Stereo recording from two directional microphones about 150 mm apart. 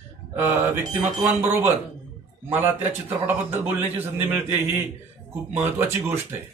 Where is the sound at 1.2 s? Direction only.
15° right (ahead or behind).